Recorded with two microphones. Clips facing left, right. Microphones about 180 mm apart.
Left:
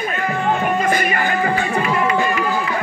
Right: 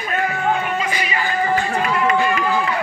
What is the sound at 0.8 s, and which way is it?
Music, 50° left (ahead or behind).